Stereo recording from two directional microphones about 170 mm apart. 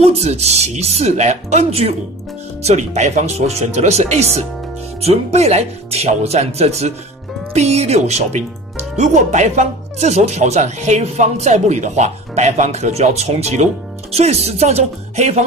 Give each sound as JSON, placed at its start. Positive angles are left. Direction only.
{"t": 0.0, "sound": "speech", "side_deg": -40}